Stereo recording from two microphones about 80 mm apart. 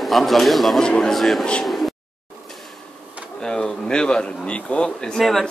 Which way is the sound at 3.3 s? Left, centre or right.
Centre.